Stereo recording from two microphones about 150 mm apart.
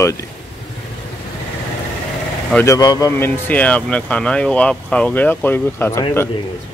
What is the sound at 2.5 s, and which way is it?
Speech, 20° left (ahead or behind).